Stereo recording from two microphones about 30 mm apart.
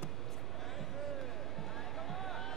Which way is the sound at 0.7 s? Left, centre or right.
Centre.